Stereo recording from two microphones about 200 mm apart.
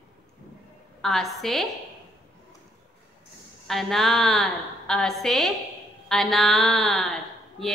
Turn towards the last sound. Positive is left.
turn(degrees=0)  # may be behind; listen again after turning